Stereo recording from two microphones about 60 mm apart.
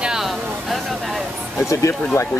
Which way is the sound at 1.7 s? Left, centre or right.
Left.